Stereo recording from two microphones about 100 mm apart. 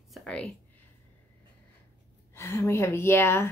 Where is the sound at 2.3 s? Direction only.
25° left (ahead or behind).